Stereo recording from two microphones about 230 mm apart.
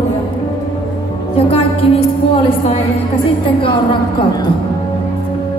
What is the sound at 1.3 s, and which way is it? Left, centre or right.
Music, left.